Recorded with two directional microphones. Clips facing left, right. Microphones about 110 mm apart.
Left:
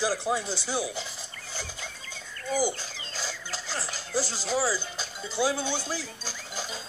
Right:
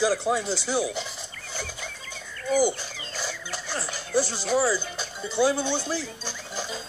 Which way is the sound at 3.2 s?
55° right (ahead or behind).